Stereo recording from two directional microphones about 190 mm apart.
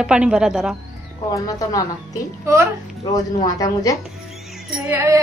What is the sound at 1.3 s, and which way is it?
Speech, 20° left (ahead or behind).